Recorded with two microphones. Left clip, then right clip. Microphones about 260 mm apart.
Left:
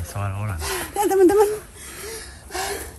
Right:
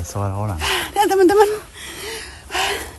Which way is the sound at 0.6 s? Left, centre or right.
Centre.